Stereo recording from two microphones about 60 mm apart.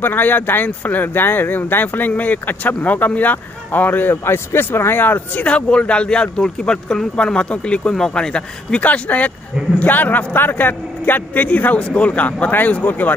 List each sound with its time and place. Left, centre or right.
0.0 s speech: left